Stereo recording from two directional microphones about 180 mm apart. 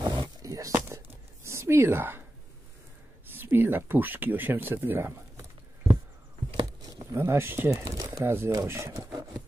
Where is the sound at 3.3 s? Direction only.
10° right (ahead or behind).